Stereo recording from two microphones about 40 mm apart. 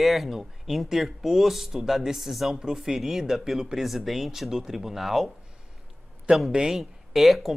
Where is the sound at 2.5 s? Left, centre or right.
Centre.